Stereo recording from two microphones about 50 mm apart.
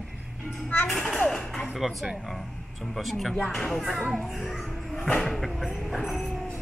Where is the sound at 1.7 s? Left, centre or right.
Centre.